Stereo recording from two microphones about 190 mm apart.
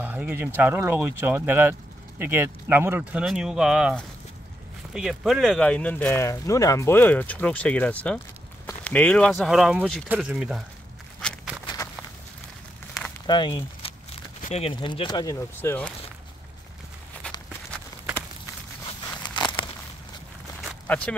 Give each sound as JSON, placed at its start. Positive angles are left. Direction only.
{"t": 0.0, "sound": "speech", "side_deg": -10}
{"t": 11.6, "sound": "walk", "side_deg": 20}
{"t": 13.3, "sound": "speech", "side_deg": 25}
{"t": 18.9, "sound": "a sound", "side_deg": 20}
{"t": 20.8, "sound": "speech", "side_deg": 5}